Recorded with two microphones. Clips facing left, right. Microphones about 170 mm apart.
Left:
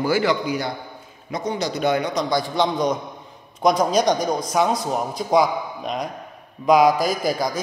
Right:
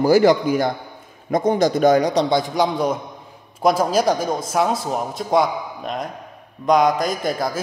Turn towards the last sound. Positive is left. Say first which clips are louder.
# even
turn(degrees=0)  # may be behind; listen again after turning